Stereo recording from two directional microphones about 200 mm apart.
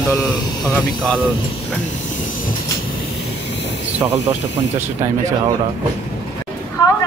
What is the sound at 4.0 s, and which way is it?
Speech, 15° right (ahead or behind).